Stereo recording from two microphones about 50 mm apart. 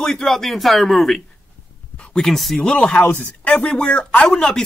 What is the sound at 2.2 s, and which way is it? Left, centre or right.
Speech, centre.